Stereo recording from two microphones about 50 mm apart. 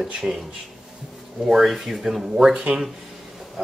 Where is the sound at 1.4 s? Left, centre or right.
Centre.